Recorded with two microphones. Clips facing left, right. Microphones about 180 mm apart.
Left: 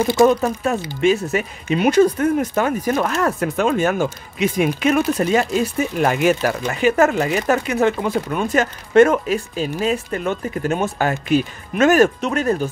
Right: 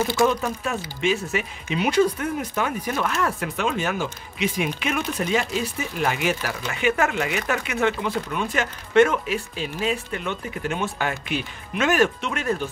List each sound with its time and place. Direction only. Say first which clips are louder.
0.2 s speech: left 8 dB; 40° left (ahead or behind)